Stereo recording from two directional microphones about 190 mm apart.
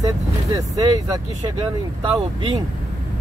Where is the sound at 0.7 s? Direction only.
20° right (ahead or behind).